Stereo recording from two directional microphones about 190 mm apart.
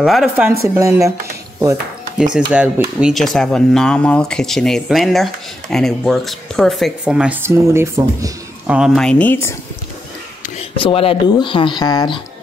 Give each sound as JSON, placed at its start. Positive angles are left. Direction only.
{"t": 0.0, "sound": "speech", "side_deg": 0}
{"t": 0.7, "sound": "speech", "side_deg": -15}
{"t": 2.3, "sound": "speech", "side_deg": -5}
{"t": 8.7, "sound": "a woman's voice", "side_deg": 0}
{"t": 10.4, "sound": "speech", "side_deg": 30}